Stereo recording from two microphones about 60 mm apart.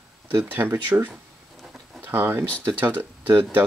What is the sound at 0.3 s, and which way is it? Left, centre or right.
Speech, right.